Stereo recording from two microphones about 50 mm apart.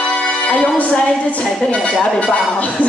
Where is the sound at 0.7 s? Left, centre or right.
Left.